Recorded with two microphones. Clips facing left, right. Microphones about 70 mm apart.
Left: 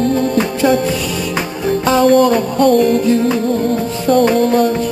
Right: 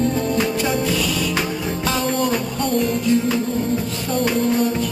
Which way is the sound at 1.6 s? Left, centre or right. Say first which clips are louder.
Left 9 dB; left.